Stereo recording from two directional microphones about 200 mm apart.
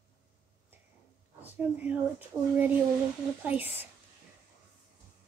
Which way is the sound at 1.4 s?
10° right (ahead or behind).